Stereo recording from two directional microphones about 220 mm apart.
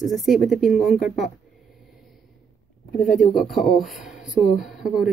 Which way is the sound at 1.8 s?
Centre (ahead or behind).